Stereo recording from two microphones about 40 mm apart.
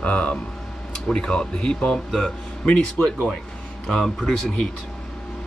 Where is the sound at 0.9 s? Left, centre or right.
Centre.